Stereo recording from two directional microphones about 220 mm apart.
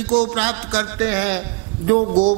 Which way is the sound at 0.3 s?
10° right (ahead or behind).